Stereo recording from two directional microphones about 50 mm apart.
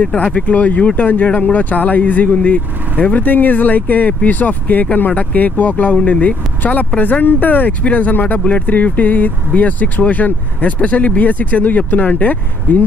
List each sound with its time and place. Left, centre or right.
0.0 s speech: left